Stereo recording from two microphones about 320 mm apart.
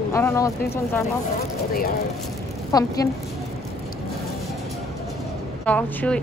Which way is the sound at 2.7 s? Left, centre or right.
Centre.